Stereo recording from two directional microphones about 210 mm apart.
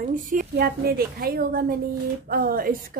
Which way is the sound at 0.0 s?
40° right (ahead or behind).